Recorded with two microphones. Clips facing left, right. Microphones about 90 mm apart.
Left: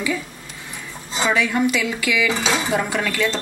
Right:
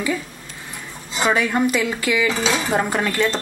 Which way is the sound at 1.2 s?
40° right (ahead or behind).